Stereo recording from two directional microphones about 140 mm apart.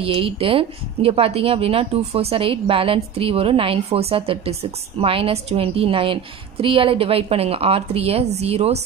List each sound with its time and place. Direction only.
0.0 s a woman's voice: 40° right (ahead or behind)